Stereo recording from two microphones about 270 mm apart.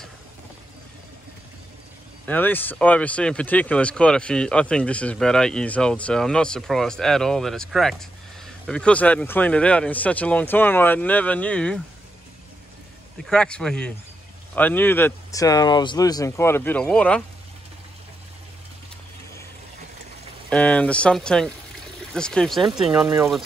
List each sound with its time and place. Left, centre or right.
2.2 s speech: centre
13.2 s speech: centre
20.4 s speech: centre